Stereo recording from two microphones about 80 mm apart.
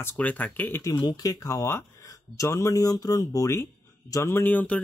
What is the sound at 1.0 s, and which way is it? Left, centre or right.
Speech, left.